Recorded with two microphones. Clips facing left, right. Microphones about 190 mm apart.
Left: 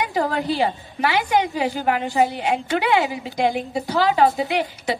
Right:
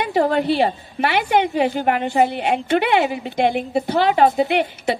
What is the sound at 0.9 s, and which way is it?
A woman's voice, 65° right (ahead or behind).